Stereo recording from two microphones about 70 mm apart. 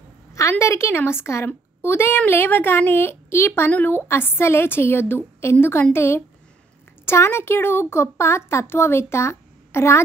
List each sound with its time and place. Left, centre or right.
0.3 s a woman's voice: left